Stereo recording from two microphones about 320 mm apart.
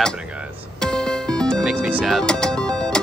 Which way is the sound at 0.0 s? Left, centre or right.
Centre.